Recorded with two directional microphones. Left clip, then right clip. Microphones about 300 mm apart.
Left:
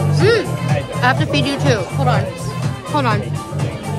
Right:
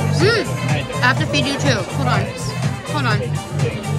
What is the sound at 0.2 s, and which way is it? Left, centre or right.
Music, centre.